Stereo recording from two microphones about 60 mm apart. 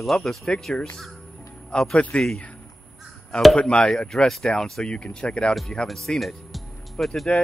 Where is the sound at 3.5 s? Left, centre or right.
Centre.